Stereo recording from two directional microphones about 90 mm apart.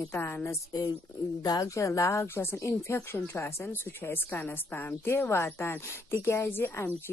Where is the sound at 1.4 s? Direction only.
50° left (ahead or behind).